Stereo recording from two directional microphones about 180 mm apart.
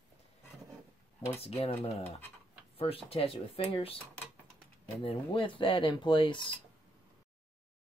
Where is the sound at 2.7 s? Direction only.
30° left (ahead or behind).